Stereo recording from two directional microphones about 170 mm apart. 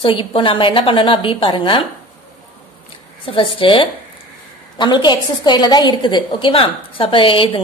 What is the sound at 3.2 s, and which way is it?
A woman's voice, 30° left (ahead or behind).